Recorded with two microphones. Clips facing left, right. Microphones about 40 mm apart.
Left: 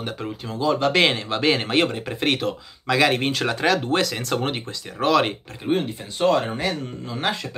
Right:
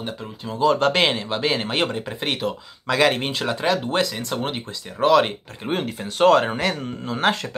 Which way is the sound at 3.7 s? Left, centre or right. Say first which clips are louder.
Even; centre.